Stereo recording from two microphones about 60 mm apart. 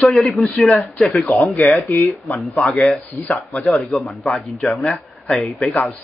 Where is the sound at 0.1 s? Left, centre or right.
Centre.